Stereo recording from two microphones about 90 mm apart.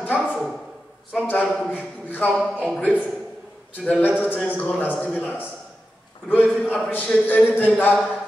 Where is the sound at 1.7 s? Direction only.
20° left (ahead or behind).